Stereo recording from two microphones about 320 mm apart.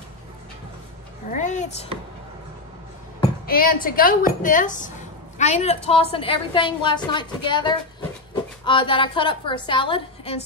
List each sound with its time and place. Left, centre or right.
1.3 s speech: left
3.4 s a woman's voice: left